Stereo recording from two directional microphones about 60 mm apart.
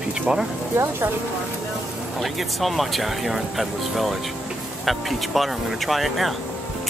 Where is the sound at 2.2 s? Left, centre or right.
Centre.